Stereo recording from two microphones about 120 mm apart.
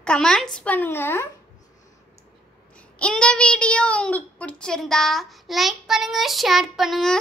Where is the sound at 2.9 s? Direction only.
10° left (ahead or behind).